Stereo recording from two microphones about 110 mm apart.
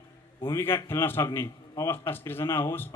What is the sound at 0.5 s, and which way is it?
A man's voice, 20° left (ahead or behind).